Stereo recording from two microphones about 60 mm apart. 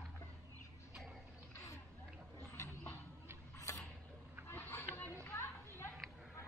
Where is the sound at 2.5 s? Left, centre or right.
Left.